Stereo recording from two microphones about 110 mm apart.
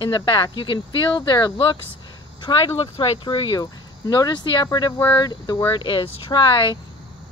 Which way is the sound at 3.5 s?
35° left (ahead or behind).